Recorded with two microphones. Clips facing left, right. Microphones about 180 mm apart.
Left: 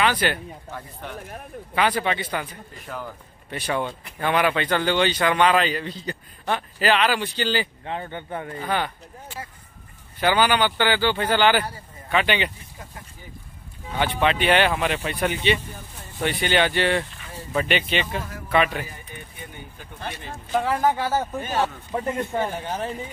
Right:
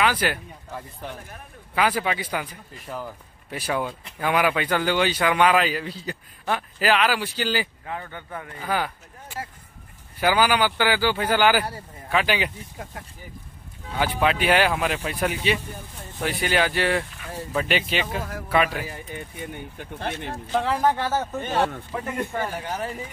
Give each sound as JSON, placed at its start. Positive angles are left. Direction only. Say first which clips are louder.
{"t": 0.0, "sound": "a man's voice", "louder": "left 1 dB", "side_deg": -5}
{"t": 7.8, "sound": "a man's voice", "louder": "left 3 dB", "side_deg": 25}
{"t": 8.5, "sound": "a man's voice", "louder": "even", "side_deg": -5}
{"t": 10.2, "sound": "a man's voice", "louder": "even", "side_deg": -5}
{"t": 13.9, "sound": "a man's voice", "louder": "even", "side_deg": -5}
{"t": 20.1, "sound": "speech", "louder": "right 4 dB", "side_deg": -60}
{"t": 20.5, "sound": "speech", "louder": "left 1 dB", "side_deg": 5}
{"t": 22.3, "sound": "a man's voice", "louder": "left 2 dB", "side_deg": 20}